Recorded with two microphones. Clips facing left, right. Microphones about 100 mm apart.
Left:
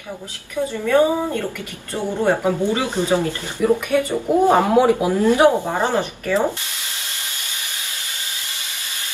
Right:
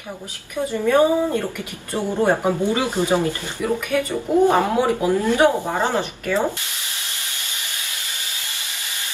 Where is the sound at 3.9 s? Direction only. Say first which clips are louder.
Left 1 dB; 20° left (ahead or behind).